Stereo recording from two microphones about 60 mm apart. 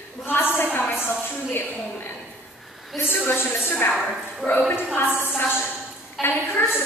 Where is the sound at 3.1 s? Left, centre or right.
Left.